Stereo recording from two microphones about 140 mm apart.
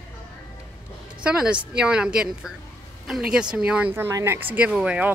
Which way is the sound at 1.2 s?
5° right (ahead or behind).